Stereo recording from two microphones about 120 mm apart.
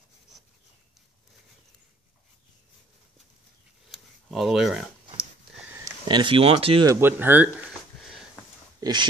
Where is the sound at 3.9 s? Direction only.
Centre (ahead or behind).